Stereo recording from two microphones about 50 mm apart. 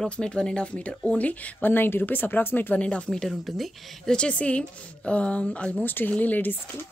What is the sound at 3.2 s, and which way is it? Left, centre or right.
Speech, centre.